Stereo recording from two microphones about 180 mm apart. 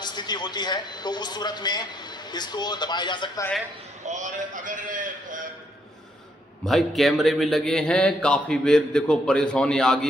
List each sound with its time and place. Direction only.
0.0 s a man's voice: 25° left (ahead or behind)
4.0 s a man's voice: 40° right (ahead or behind)
6.6 s a man's voice: centre (ahead or behind)